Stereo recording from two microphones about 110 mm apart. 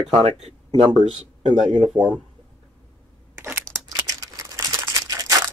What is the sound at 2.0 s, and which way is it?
Speech, 45° right (ahead or behind).